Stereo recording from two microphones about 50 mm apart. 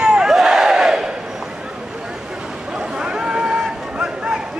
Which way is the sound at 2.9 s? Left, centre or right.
Centre.